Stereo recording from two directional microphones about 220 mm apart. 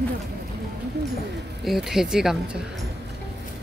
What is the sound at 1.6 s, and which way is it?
Speech, centre (ahead or behind).